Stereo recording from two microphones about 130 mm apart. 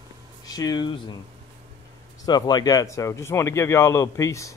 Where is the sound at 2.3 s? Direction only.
30° left (ahead or behind).